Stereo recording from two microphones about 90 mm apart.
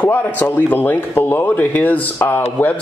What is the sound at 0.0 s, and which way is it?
Speech, 20° left (ahead or behind).